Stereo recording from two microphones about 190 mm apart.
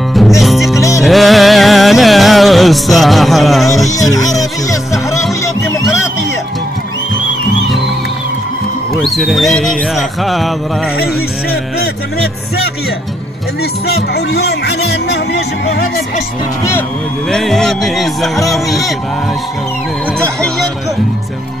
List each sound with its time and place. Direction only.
0.4 s music: centre (ahead or behind)
0.7 s music: 15° left (ahead or behind)
1.0 s music: centre (ahead or behind)
4.1 s music: 20° left (ahead or behind)
9.0 s speech: centre (ahead or behind)
13.8 s speech: 55° left (ahead or behind)
17.3 s speech: centre (ahead or behind)